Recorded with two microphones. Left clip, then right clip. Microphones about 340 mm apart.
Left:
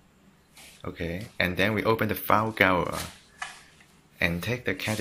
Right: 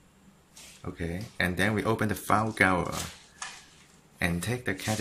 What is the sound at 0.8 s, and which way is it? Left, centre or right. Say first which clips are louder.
Speech: left 3 dB; centre.